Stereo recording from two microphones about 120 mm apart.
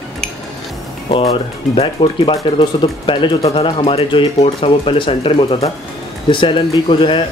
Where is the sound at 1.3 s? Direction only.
45° left (ahead or behind).